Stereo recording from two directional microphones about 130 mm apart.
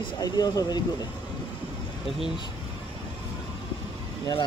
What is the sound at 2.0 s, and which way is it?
Speech, centre (ahead or behind).